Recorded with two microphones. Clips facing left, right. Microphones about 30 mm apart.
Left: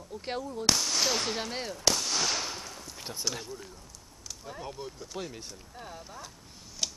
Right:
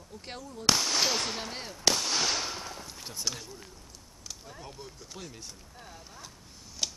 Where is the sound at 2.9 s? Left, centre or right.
Centre.